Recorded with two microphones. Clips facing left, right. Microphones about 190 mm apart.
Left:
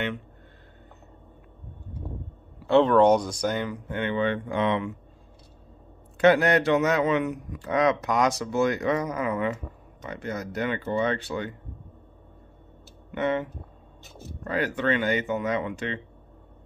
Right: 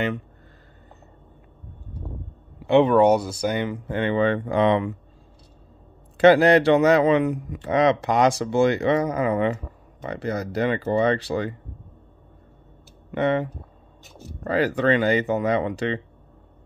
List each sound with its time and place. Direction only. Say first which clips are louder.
2.6 s speech: right 2 dB; 15° right (ahead or behind)
3.5 s speech: right 4 dB; 20° right (ahead or behind)
3.8 s speech: right 6 dB; 35° right (ahead or behind)
6.1 s speech: right 5 dB; 30° right (ahead or behind)
13.1 s speech: right 4 dB; 35° right (ahead or behind)